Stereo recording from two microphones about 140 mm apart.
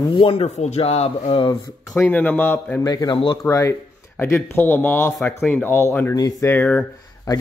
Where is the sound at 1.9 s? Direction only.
15° left (ahead or behind).